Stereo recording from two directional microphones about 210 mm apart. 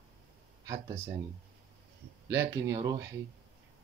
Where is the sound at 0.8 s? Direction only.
10° right (ahead or behind).